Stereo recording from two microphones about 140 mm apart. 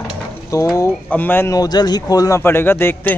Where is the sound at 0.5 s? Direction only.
20° left (ahead or behind).